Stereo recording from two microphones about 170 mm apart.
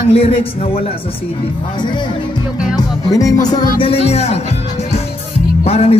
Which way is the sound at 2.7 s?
20° left (ahead or behind).